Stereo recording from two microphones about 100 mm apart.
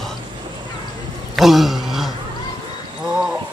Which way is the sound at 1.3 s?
Centre (ahead or behind).